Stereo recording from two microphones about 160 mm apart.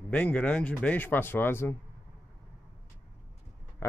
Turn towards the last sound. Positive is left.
turn(degrees=15)  # may be behind; listen again after turning